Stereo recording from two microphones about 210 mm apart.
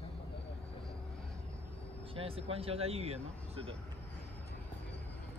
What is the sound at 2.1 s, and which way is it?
Speech, 25° right (ahead or behind).